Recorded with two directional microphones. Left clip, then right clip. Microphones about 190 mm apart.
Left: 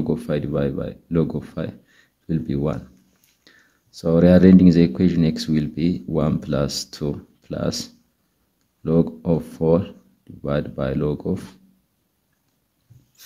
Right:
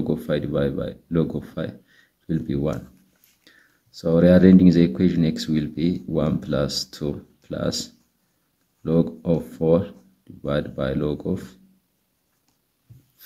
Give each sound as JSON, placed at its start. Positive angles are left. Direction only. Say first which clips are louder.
{"t": 0.1, "sound": "speech", "louder": "even", "side_deg": 15}